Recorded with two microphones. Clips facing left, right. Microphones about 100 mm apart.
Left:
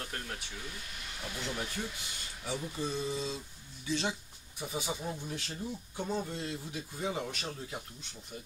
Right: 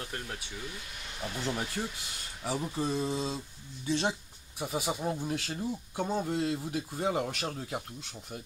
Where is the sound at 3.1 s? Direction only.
55° right (ahead or behind).